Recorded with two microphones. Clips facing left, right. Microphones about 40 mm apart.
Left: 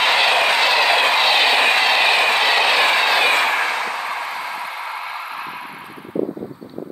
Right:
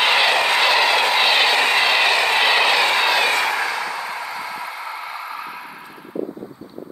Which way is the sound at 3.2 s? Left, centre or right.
Left.